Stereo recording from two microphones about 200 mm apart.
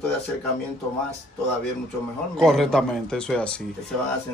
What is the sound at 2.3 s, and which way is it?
A man's voice, centre (ahead or behind).